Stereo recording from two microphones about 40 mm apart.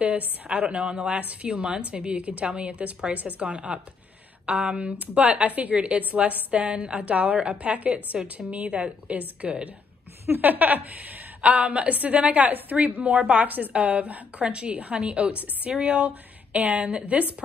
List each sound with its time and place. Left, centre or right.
0.0 s a woman's voice: right
0.7 s a woman's voice: right
8.6 s speech: right
10.4 s a woman's voice: right
16.0 s a woman's voice: right